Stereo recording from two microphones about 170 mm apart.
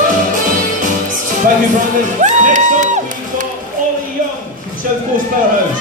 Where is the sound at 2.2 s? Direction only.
45° right (ahead or behind).